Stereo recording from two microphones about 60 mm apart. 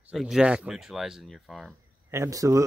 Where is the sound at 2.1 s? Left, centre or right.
Right.